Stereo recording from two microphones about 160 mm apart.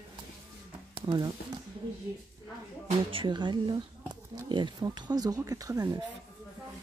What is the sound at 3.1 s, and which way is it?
Speech, 30° right (ahead or behind).